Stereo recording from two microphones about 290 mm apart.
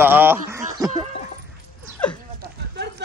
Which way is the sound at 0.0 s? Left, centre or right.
Centre.